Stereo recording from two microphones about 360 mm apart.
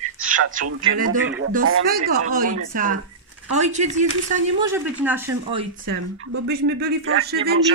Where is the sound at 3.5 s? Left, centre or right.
Centre.